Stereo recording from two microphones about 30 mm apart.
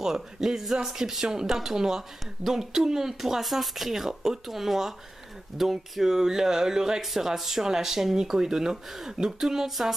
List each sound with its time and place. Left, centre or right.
0.0 s speech: centre
7.0 s speech: centre